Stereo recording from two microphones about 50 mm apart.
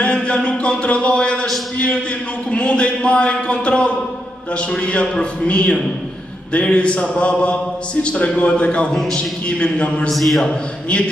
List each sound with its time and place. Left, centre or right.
0.0 s a sound: left
2.5 s a man's voice: left
10.0 s a man's voice: centre